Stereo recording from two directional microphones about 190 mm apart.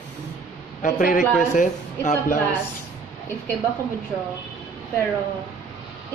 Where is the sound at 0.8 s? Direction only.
45° left (ahead or behind).